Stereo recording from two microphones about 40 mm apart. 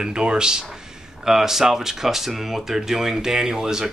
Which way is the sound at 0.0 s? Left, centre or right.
Centre.